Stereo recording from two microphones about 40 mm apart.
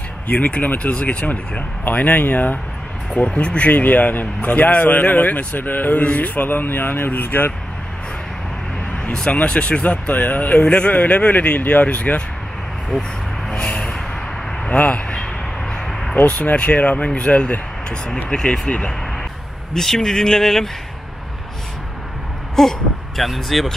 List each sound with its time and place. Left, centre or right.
0.6 s speech: left
3.2 s speech: left
9.3 s speech: left
9.8 s speech: left
10.6 s speech: left
13.5 s a sound: left
15.7 s a sound: centre
16.3 s speech: left
18.0 s speech: centre
22.6 s speech: centre